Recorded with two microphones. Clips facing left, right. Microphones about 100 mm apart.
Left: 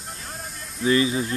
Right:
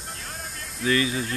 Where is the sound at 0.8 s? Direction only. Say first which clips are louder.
Left 3 dB; 25° left (ahead or behind).